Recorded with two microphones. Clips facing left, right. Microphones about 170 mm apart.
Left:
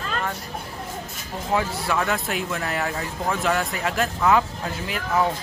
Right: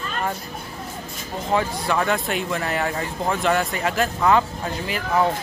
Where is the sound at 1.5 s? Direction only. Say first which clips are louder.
Right 2 dB; centre (ahead or behind).